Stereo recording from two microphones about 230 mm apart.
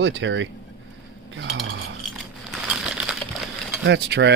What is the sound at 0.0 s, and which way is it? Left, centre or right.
Speech, right.